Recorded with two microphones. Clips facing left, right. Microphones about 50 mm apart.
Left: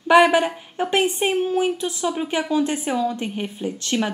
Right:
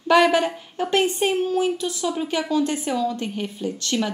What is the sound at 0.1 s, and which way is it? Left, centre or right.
A woman's voice, centre.